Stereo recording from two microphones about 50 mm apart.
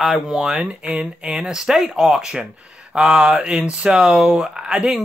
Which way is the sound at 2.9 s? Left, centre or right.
Right.